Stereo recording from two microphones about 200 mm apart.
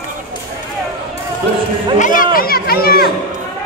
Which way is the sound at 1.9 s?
40° left (ahead or behind).